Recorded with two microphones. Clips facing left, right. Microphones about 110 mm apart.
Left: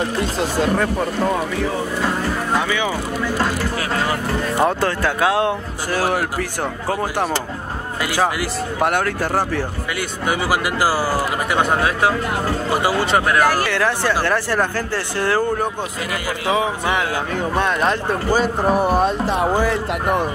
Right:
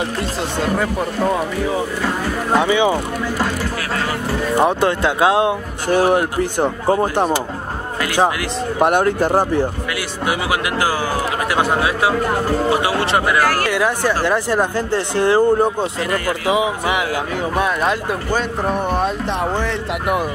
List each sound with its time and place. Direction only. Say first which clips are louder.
0.2 s speech: left 2 dB; centre (ahead or behind)
2.5 s speech: right 8 dB; 20° right (ahead or behind)
4.6 s speech: right 3 dB; 20° right (ahead or behind)
8.7 s speech: right 5 dB; 20° right (ahead or behind)
9.9 s speech: left 3 dB; 5° right (ahead or behind)
13.4 s speech: even; 15° left (ahead or behind)
13.7 s speech: right 2 dB; 15° right (ahead or behind)
16.4 s speech: even; 10° right (ahead or behind)
18.3 s speech: left 3 dB; 5° left (ahead or behind)